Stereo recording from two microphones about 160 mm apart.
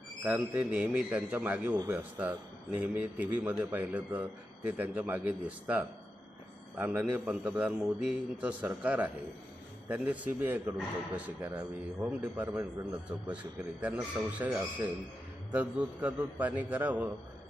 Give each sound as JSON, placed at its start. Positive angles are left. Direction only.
{"t": 0.2, "sound": "speech", "side_deg": -10}
{"t": 12.4, "sound": "speech", "side_deg": -25}
{"t": 13.3, "sound": "speech", "side_deg": -10}